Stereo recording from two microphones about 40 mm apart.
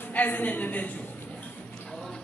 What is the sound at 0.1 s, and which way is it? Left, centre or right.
Speech, left.